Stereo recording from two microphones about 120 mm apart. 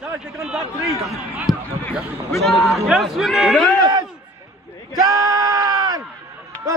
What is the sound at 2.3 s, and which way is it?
A man's voice, centre (ahead or behind).